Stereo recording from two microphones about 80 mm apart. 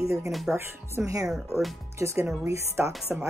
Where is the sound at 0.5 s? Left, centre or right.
Right.